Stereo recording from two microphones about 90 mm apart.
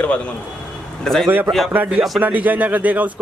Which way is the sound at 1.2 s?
25° right (ahead or behind).